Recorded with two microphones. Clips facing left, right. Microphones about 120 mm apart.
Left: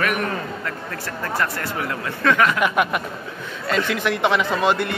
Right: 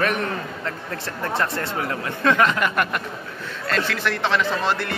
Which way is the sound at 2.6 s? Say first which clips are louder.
Left 3 dB; 5° left (ahead or behind).